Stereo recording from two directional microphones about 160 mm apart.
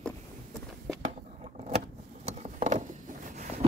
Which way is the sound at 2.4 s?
45° right (ahead or behind).